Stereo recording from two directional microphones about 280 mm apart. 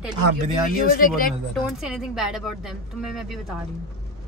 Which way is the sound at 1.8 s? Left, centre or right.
Centre.